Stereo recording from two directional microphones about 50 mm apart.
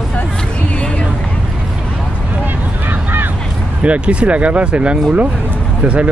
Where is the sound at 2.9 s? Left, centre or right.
Right.